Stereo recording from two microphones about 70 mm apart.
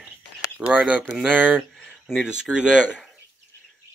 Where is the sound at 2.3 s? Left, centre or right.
Centre.